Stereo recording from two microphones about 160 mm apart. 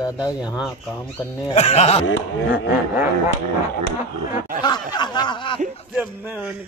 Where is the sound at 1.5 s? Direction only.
40° left (ahead or behind).